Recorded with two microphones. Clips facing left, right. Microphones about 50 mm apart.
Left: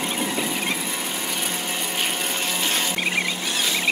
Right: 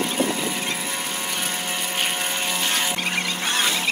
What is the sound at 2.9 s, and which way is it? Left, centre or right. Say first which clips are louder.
Squeal: left 1 dB; centre.